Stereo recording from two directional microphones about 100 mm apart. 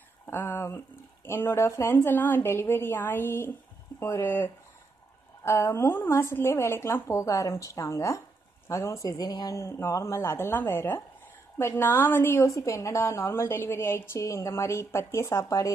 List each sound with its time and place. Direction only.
0.3 s a woman's voice: 20° left (ahead or behind); by 9.6 s 40° left (ahead or behind)
9.6 s a woman's voice: 25° left (ahead or behind)